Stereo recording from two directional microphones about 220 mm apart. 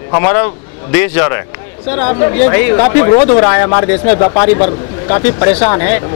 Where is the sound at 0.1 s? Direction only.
15° left (ahead or behind).